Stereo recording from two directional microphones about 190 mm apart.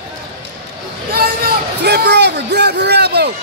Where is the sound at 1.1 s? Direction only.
50° right (ahead or behind).